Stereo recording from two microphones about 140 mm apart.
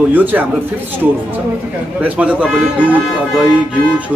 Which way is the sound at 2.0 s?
10° right (ahead or behind).